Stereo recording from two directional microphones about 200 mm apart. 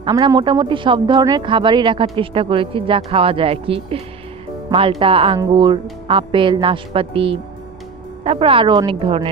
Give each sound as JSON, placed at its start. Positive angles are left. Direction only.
{"t": 0.0, "sound": "speech", "side_deg": -20}